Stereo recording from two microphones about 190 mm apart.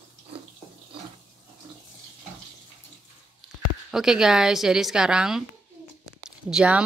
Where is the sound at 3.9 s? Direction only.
5° right (ahead or behind).